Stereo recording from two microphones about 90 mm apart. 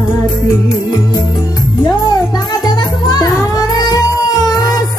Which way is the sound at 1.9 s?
50° left (ahead or behind).